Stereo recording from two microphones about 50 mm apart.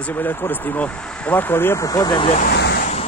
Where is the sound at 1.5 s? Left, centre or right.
Left.